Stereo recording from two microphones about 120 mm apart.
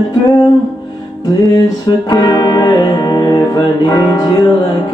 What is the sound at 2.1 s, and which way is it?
Speech, 35° left (ahead or behind).